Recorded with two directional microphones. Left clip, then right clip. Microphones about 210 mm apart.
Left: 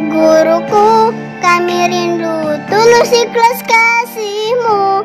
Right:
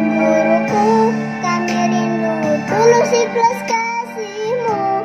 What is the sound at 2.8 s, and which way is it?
Music, 55° left (ahead or behind).